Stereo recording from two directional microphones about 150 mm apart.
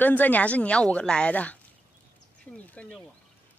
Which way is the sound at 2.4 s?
5° left (ahead or behind).